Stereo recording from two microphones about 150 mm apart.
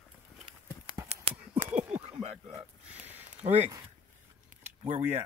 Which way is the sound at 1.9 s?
10° right (ahead or behind).